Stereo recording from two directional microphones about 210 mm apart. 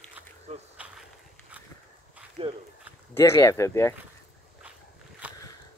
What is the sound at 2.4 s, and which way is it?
Speech, 25° right (ahead or behind).